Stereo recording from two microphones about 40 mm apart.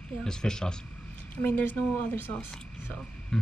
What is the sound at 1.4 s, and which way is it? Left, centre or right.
Speech, left.